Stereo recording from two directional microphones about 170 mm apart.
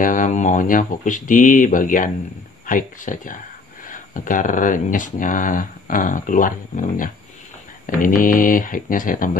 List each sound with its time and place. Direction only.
0.0 s speech: 50° left (ahead or behind)